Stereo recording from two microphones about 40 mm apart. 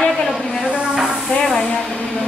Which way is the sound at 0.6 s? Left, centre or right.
Right.